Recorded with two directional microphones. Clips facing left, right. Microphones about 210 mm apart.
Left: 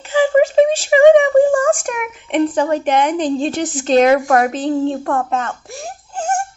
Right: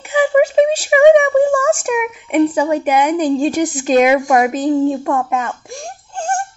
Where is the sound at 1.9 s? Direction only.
10° right (ahead or behind).